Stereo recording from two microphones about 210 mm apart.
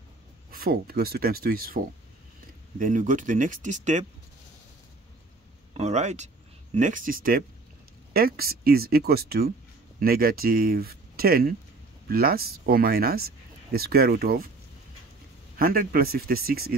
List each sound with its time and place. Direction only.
0.5 s speech: 45° right (ahead or behind)
2.8 s speech: 40° right (ahead or behind)
5.8 s speech: 30° right (ahead or behind)
15.5 s speech: 40° right (ahead or behind)